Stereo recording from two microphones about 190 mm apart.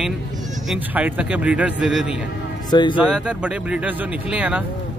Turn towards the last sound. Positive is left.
turn(degrees=-5)  # may be behind; listen again after turning